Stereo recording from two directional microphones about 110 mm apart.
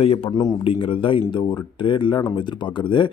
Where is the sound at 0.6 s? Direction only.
55° left (ahead or behind).